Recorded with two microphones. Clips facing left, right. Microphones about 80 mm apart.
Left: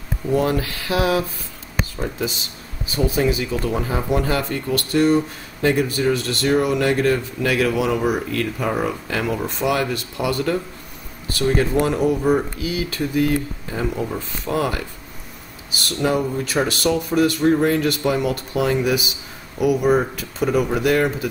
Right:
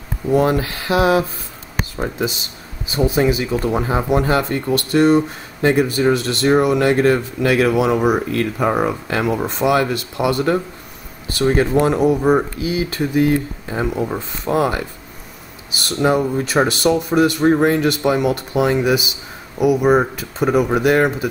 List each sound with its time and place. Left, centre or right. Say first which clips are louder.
0.3 s speech: right 4 dB; right
2.9 s speech: right 3 dB; right
11.7 s speech: right 4 dB; right
15.9 s speech: right 4 dB; right